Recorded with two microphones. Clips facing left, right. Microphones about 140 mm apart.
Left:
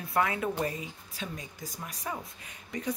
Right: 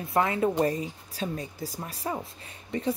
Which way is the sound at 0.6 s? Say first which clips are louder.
Right 7 dB; 35° right (ahead or behind).